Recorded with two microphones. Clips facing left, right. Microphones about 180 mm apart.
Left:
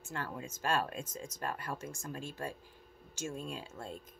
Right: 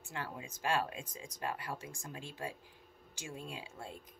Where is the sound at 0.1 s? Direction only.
15° right (ahead or behind).